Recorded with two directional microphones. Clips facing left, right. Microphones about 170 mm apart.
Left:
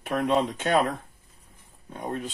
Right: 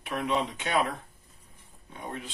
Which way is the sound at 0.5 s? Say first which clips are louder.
Left 5 dB; 45° left (ahead or behind).